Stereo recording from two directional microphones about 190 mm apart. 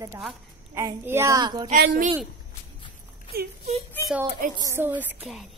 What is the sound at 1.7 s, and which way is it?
Speech, 45° right (ahead or behind).